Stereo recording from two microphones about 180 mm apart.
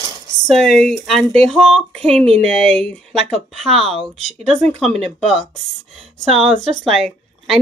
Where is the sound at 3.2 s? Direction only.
35° right (ahead or behind).